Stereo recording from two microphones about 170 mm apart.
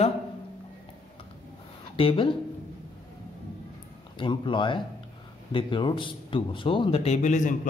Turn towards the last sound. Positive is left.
turn(degrees=45)  # may be behind; listen again after turning